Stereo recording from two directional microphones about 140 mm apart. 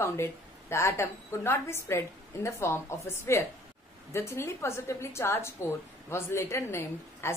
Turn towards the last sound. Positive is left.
turn(degrees=20)  # may be behind; listen again after turning